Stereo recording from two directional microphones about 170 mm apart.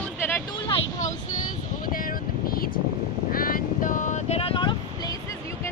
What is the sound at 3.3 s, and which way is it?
Vehicle, 55° left (ahead or behind).